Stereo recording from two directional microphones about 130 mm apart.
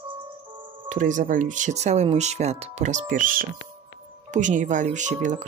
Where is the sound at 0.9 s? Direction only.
75° right (ahead or behind).